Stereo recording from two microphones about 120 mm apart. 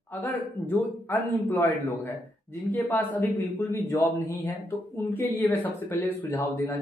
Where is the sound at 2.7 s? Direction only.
15° left (ahead or behind).